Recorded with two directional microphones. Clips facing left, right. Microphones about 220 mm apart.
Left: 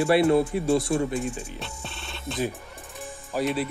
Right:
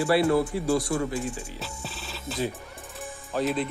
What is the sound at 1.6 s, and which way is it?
Music, centre (ahead or behind).